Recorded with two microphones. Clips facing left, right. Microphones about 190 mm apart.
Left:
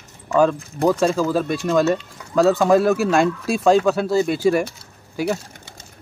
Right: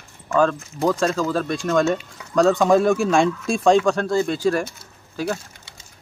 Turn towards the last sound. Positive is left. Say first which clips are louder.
# left 3 dB
turn(degrees=10)  # may be behind; listen again after turning